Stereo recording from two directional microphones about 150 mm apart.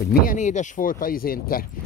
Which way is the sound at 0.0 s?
75° left (ahead or behind).